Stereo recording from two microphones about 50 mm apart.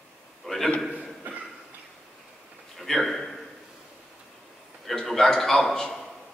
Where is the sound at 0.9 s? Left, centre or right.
Right.